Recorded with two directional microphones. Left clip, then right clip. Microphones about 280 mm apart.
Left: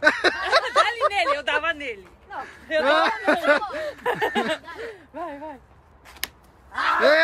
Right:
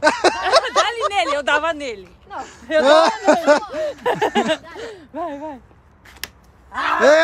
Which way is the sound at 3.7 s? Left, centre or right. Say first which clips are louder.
Right 5 dB; right.